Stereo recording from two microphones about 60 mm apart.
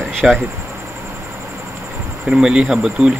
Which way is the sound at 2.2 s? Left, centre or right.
Centre.